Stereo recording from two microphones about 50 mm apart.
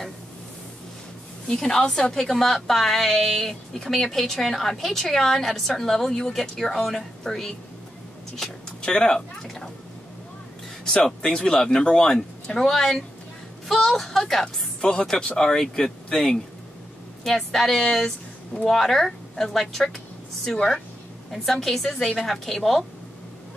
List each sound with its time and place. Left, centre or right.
1.5 s a woman's voice: centre
2.2 s a woman's voice: centre
8.8 s a woman's voice: centre
9.4 s a woman's voice: centre
11.1 s a woman's voice: centre